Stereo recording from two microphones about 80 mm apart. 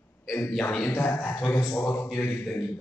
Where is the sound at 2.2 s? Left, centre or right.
Left.